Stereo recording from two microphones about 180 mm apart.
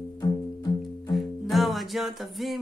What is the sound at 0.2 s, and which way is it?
Music, 20° left (ahead or behind).